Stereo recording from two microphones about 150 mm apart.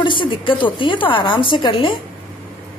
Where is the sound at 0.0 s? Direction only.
35° left (ahead or behind).